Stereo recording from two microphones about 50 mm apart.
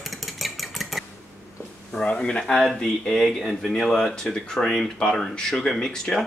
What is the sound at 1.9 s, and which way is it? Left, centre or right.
Speech, centre.